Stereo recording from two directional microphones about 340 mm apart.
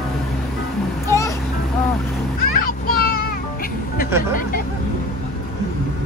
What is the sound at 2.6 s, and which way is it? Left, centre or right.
Music, left.